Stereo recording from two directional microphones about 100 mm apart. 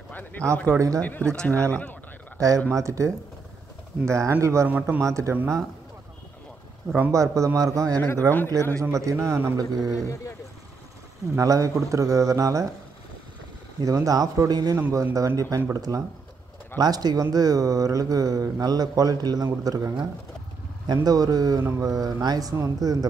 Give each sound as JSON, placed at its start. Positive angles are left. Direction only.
{"t": 0.1, "sound": "a man's voice", "side_deg": 15}
{"t": 0.7, "sound": "speech", "side_deg": -30}
{"t": 1.0, "sound": "speech", "side_deg": 10}
{"t": 2.3, "sound": "speech", "side_deg": -35}
{"t": 4.6, "sound": "speech", "side_deg": -15}
{"t": 5.0, "sound": "speech", "side_deg": -30}
{"t": 7.1, "sound": "speech", "side_deg": -30}
{"t": 11.3, "sound": "speech", "side_deg": -35}
{"t": 13.7, "sound": "speech", "side_deg": -35}